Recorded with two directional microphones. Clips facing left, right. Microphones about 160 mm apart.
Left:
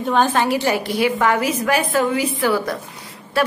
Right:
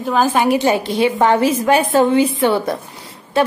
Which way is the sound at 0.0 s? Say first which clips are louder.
Right 2 dB; 5° right (ahead or behind).